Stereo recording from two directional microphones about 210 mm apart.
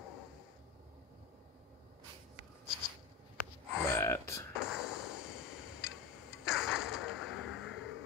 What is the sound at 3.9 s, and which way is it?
Gasp, 10° left (ahead or behind).